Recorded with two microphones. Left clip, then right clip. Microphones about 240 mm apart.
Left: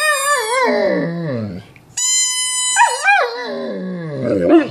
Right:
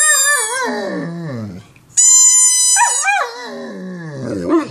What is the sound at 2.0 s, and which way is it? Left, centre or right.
Goat, centre.